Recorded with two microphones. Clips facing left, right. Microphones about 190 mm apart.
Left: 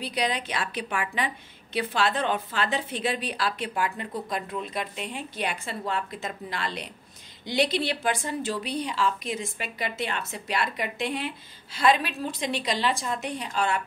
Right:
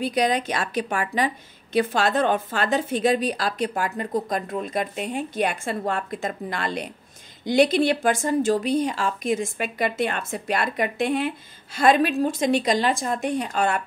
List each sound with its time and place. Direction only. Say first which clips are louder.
0.0 s a woman's voice: right 7 dB; 45° right (ahead or behind)